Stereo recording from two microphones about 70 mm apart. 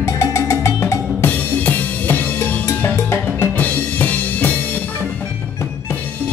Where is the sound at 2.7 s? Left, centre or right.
Left.